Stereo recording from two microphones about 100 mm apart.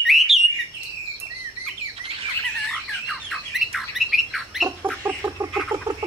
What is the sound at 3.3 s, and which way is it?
Bird, centre (ahead or behind).